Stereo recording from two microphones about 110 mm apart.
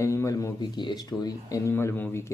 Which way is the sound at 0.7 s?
40° left (ahead or behind).